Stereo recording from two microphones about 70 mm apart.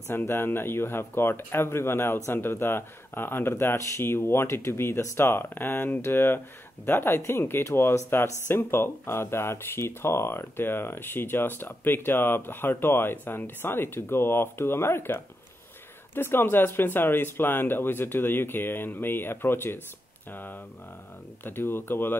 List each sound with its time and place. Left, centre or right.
0.1 s speech: left
21.5 s speech: left